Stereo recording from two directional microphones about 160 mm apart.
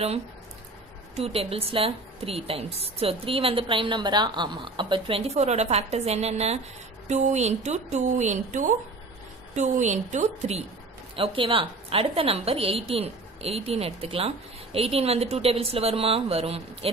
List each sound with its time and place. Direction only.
1.1 s a woman's voice: 40° right (ahead or behind)
11.1 s a woman's voice: 35° right (ahead or behind)